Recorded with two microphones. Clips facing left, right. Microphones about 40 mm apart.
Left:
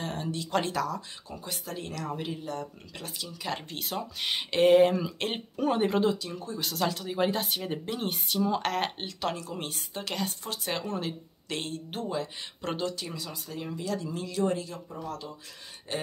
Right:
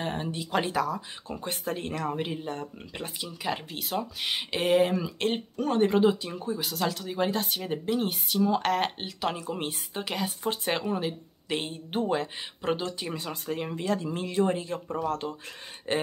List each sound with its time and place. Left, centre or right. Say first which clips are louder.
0.0 s speech: right 2 dB; right
1.3 s speech: right 6 dB; right
3.4 s a woman's voice: right 2 dB; centre
6.0 s speech: right 4 dB; right
6.6 s a woman's voice: left 4 dB; centre
9.4 s speech: right 4 dB; right
10.4 s speech: right 5 dB; right
10.8 s speech: right 3 dB; centre
13.0 s speech: right 4 dB; right
15.0 s speech: right 7 dB; right